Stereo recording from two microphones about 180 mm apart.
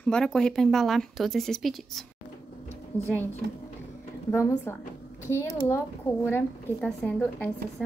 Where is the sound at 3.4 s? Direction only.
70° right (ahead or behind).